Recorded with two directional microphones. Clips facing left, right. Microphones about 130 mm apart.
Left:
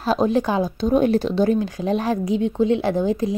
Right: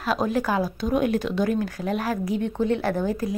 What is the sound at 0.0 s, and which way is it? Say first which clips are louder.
A woman's voice: left 5 dB; 30° left (ahead or behind).